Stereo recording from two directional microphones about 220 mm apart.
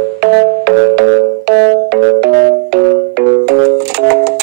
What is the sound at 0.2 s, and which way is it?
Music, 55° right (ahead or behind).